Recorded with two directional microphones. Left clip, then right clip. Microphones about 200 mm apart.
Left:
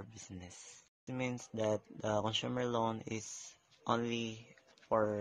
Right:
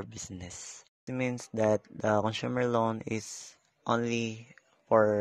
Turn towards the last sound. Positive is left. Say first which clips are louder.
# right 9 dB
turn(degrees=-40)  # may be behind; listen again after turning